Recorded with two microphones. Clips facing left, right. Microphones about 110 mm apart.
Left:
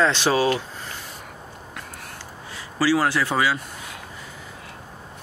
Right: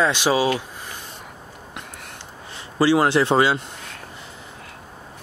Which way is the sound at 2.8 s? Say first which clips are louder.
Right 4 dB; 25° right (ahead or behind).